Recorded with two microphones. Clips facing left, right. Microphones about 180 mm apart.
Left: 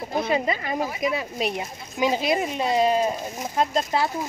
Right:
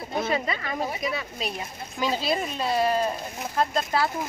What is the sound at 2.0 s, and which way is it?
Speech, 15° left (ahead or behind).